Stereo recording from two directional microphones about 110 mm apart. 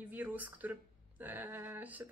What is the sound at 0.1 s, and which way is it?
Speech, 15° right (ahead or behind).